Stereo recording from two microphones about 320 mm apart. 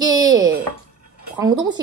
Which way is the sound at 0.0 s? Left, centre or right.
Centre.